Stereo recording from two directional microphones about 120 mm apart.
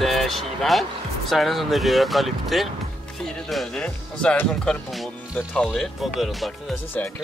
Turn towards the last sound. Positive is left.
turn(degrees=0)  # may be behind; listen again after turning